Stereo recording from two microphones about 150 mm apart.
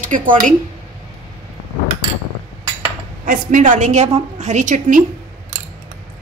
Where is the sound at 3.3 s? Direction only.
60° right (ahead or behind).